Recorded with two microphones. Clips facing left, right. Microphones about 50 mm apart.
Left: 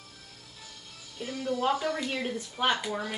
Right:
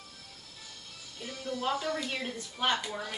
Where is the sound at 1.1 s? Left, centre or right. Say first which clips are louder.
Left 6 dB; centre.